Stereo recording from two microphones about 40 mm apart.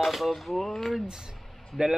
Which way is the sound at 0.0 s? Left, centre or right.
Centre.